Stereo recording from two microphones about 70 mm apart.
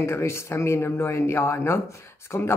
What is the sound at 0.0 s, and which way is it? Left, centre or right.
Speech, left.